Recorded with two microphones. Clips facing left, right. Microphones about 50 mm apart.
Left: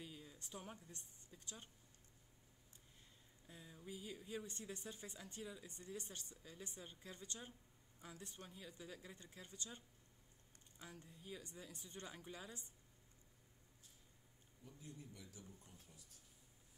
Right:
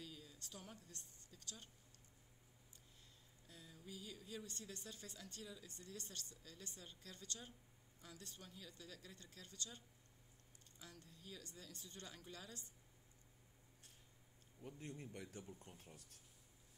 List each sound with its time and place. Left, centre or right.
0.0 s a woman's voice: left
3.4 s a woman's voice: left
14.6 s speech: right